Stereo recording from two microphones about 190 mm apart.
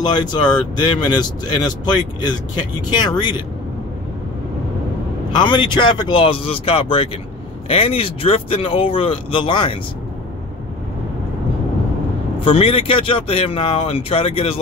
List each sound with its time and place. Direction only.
0.0 s speech: 25° left (ahead or behind)
5.3 s speech: 25° left (ahead or behind)
12.4 s speech: 30° left (ahead or behind)